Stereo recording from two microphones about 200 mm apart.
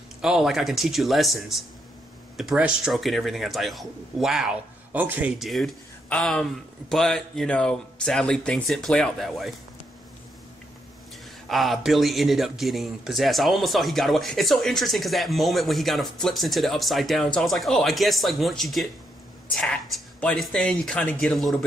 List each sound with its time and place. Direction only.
0.2 s speech: centre (ahead or behind)
11.4 s speech: centre (ahead or behind)